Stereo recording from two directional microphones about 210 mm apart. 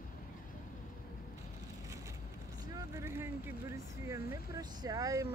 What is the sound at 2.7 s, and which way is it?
Vehicle, 15° right (ahead or behind).